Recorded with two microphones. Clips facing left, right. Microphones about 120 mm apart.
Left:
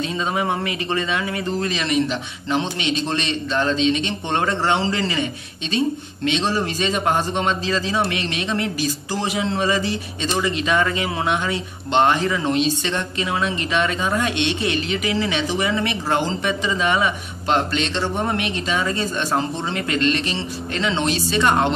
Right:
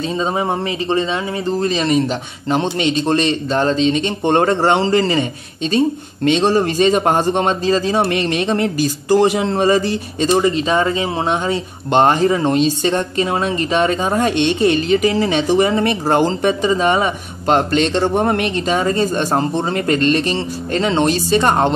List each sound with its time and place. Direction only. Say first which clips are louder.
0.1 s speech: right 6 dB; 30° right (ahead or behind)